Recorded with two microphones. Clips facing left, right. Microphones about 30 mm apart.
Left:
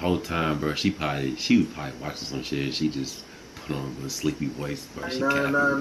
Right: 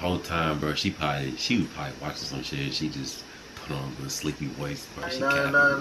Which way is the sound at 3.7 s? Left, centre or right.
Centre.